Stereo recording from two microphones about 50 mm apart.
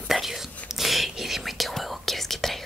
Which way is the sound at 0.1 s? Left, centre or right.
Centre.